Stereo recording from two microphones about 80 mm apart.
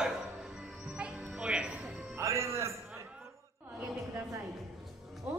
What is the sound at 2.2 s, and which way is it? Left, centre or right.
Music, right.